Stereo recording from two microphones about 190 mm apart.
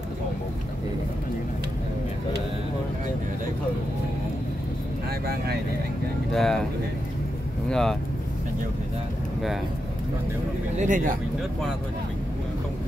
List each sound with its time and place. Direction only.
5.2 s speech: 55° right (ahead or behind)
6.3 s speech: centre (ahead or behind)
7.7 s speech: centre (ahead or behind)
10.8 s speech: 45° right (ahead or behind)